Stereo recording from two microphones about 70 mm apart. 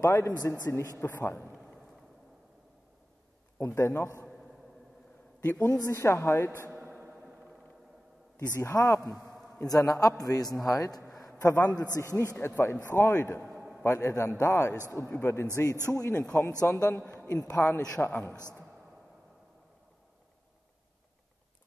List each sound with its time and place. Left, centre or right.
0.0 s a man's voice: left
1.5 s a sound: centre
3.5 s a man's voice: left
5.4 s a man's voice: left
5.7 s a woman's voice: left
6.7 s a sound: right
8.5 s a man's voice: left
12.4 s a woman's voice: left
13.4 s a sound: centre
13.8 s a man's voice: left
18.1 s a woman's voice: centre